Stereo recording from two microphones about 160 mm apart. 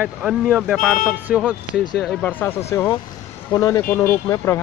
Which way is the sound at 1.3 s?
5° right (ahead or behind).